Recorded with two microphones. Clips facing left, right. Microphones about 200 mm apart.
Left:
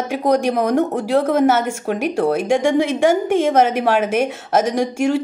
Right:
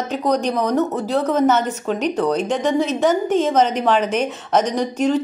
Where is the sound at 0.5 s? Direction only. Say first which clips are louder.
Left 2 dB; 50° left (ahead or behind).